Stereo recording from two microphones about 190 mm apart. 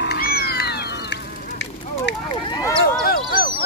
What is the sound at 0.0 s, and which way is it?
Cat, 55° left (ahead or behind).